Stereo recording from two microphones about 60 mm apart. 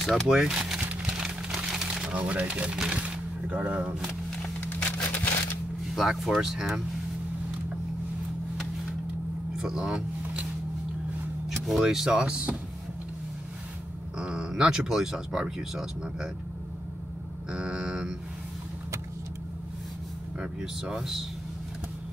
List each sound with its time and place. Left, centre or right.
0.3 s speech: centre
1.0 s a sound: centre
2.0 s speech: right
4.6 s a sound: left
5.9 s speech: centre
9.6 s speech: centre
11.6 s speech: centre
14.1 s speech: centre
17.5 s speech: centre
20.3 s speech: centre